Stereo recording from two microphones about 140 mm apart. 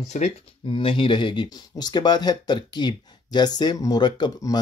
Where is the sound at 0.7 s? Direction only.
40° left (ahead or behind).